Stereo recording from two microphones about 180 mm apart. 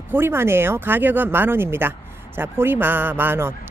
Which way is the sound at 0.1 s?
15° right (ahead or behind).